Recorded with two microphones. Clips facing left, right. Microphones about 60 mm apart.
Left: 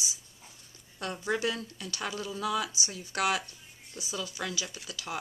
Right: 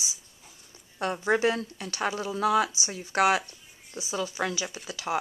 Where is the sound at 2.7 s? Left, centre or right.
Right.